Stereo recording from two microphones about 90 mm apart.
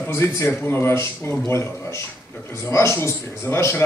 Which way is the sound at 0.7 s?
30° left (ahead or behind).